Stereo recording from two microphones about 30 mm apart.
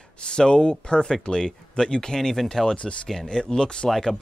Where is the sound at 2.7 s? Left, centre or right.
Left.